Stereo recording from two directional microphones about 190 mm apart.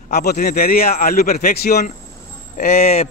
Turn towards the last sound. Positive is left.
turn(degrees=35)  # may be behind; listen again after turning